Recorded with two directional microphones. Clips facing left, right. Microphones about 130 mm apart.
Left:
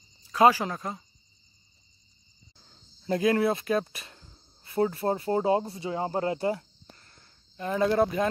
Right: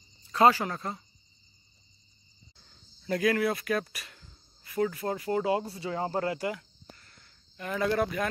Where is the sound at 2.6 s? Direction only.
25° left (ahead or behind).